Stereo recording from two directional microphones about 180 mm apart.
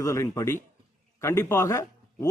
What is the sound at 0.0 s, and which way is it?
A man's voice, 15° left (ahead or behind).